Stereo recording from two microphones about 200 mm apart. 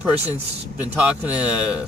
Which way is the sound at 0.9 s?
5° right (ahead or behind).